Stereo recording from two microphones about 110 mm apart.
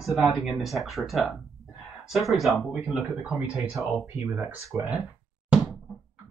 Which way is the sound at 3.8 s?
25° right (ahead or behind).